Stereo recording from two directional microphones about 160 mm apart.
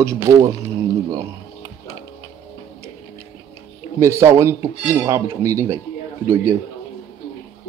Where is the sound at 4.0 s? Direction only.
20° right (ahead or behind).